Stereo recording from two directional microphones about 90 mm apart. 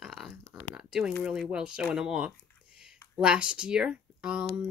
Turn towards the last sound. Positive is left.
turn(degrees=-10)  # may be behind; listen again after turning